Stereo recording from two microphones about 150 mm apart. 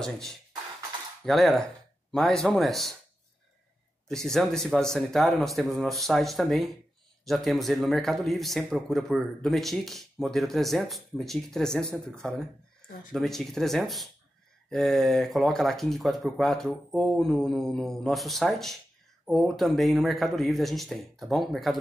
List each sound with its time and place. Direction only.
0.0 s a man's voice: 5° left (ahead or behind)
4.1 s a man's voice: 5° left (ahead or behind)